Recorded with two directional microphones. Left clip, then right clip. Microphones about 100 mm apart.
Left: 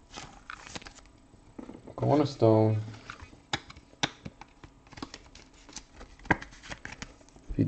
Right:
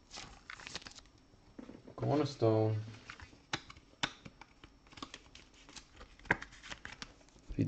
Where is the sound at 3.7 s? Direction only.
5° left (ahead or behind).